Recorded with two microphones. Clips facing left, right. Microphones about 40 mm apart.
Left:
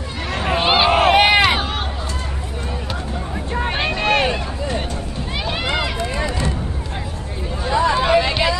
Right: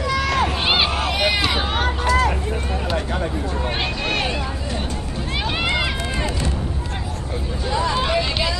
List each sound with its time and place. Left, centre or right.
0.6 s run: centre
0.8 s run: left
2.0 s vehicle: right
3.8 s vehicle: centre
7.7 s vehicle: centre